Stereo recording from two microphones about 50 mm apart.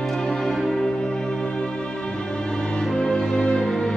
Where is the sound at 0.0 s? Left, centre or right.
Centre.